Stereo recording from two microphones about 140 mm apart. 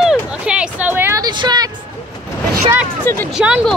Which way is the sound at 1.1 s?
30° right (ahead or behind).